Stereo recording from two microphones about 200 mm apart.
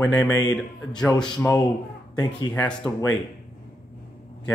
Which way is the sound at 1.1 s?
15° left (ahead or behind).